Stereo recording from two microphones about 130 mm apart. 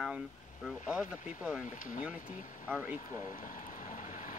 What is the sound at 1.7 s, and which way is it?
Speech, 90° left.